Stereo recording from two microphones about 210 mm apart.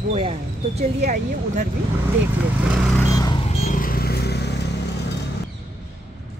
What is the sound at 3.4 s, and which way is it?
Vehicle, 35° left (ahead or behind).